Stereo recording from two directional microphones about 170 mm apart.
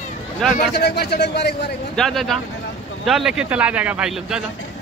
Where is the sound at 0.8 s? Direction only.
70° left (ahead or behind).